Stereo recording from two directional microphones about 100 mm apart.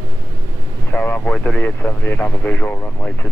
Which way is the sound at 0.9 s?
15° left (ahead or behind).